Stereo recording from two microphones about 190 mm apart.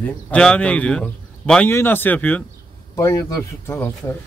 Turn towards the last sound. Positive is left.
turn(degrees=15)  # may be behind; listen again after turning